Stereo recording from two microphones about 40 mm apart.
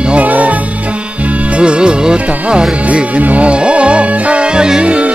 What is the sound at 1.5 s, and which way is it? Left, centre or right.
Speech, right.